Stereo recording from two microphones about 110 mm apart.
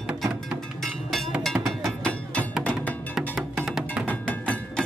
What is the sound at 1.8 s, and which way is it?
Music, 10° left (ahead or behind).